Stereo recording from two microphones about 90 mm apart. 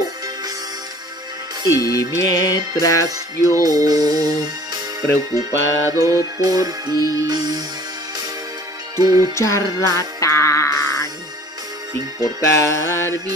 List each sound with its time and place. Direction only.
1.8 s music: 40° left (ahead or behind)
3.6 s music: 45° right (ahead or behind)
5.3 s music: 40° right (ahead or behind)
8.9 s music: 45° right (ahead or behind)
9.3 s music: 35° left (ahead or behind)
12.2 s music: 35° left (ahead or behind)